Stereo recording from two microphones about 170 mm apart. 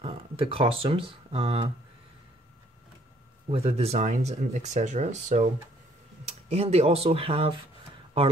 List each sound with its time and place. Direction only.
0.0 s speech: 35° right (ahead or behind)
3.4 s speech: 35° right (ahead or behind)